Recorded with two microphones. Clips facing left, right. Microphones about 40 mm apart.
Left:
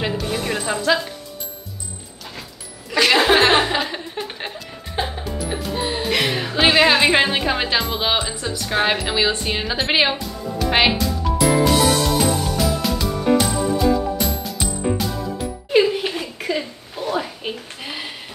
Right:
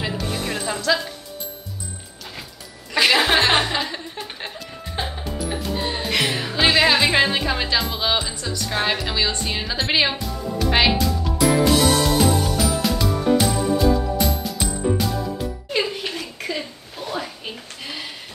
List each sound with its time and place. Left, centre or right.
0.2 s music: centre
3.1 s chuckle: centre
4.6 s music: centre
7.9 s speech: centre
10.1 s music: centre
10.7 s a child's voice: centre
11.0 s music: centre
15.7 s a sound: centre